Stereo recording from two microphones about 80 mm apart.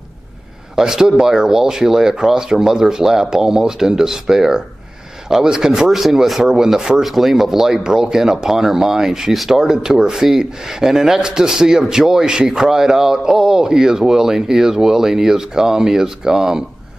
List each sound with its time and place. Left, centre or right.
0.7 s speech: centre